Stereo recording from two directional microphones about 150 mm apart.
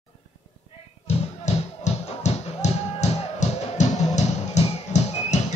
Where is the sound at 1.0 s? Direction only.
50° left (ahead or behind).